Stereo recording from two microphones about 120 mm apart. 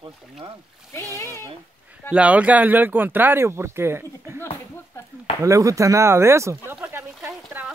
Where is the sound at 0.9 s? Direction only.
25° left (ahead or behind).